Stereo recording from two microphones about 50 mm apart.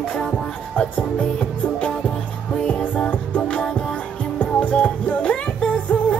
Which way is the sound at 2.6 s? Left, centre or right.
Left.